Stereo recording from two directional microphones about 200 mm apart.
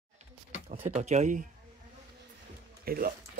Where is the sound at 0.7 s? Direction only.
35° right (ahead or behind).